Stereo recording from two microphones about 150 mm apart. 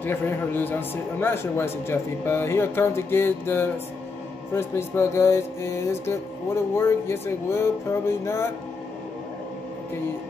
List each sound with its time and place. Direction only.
0.0 s speech: 15° left (ahead or behind)